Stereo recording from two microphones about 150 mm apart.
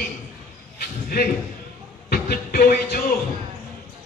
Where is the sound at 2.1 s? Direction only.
80° left.